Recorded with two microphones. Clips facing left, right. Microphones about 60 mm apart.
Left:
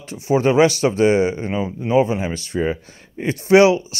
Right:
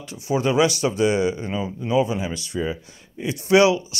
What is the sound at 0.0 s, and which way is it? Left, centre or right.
Speech, left.